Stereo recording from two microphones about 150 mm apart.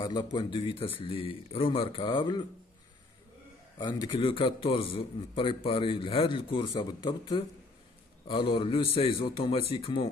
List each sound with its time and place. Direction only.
0.0 s a man's voice: 30° left (ahead or behind)
3.7 s a man's voice: 30° left (ahead or behind)